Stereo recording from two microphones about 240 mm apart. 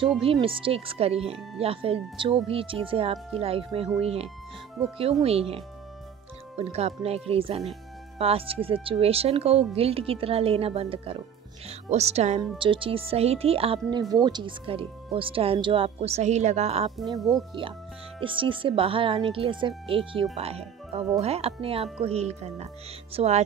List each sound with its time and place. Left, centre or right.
0.2 s speech: right
17.2 s speech: centre
18.2 s speech: right